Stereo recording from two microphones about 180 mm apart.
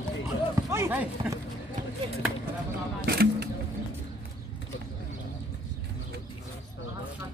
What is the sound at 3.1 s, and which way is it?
Single-lens reflex camera, 65° right (ahead or behind).